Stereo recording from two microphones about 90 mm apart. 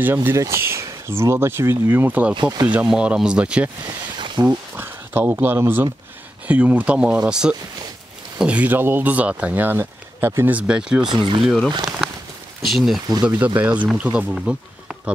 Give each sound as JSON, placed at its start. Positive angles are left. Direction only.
{"t": 0.0, "sound": "speech", "side_deg": -25}
{"t": 3.8, "sound": "a sound", "side_deg": -55}
{"t": 4.7, "sound": "speech", "side_deg": -25}
{"t": 11.1, "sound": "speech", "side_deg": -60}
{"t": 11.4, "sound": "speech", "side_deg": 5}
{"t": 13.6, "sound": "speech", "side_deg": -15}